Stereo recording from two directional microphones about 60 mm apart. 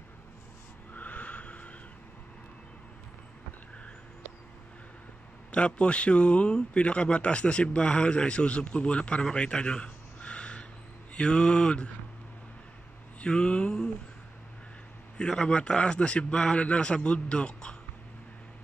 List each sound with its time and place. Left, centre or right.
0.9 s a sound: left
5.5 s a man's voice: centre
13.2 s a man's voice: centre
15.1 s a man's voice: centre